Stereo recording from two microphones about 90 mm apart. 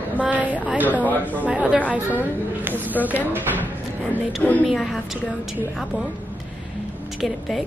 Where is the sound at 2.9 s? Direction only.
20° right (ahead or behind).